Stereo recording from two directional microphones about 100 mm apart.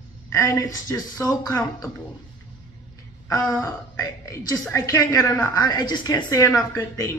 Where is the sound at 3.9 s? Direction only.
35° left (ahead or behind).